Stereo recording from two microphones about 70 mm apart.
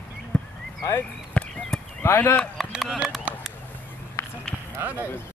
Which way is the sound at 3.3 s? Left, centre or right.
Right.